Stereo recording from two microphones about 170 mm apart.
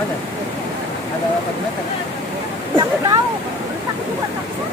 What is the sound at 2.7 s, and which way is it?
Speech, 20° right (ahead or behind).